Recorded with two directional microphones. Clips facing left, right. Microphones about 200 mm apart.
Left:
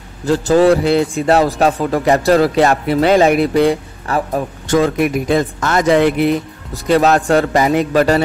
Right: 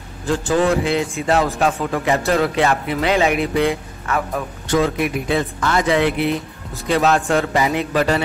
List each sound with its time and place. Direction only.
0.2 s speech: 40° left (ahead or behind)
4.7 s speech: 50° left (ahead or behind)